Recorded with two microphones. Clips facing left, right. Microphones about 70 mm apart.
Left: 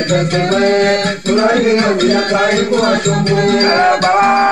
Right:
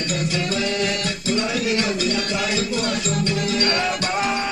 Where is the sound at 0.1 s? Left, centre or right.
Left.